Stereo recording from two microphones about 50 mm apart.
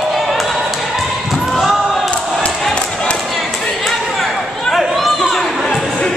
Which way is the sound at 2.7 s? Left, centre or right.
Centre.